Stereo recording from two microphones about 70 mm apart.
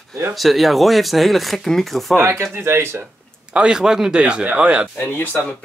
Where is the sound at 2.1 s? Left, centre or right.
Right.